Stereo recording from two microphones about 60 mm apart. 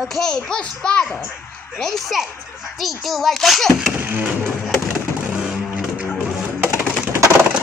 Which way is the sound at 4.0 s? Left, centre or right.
Right.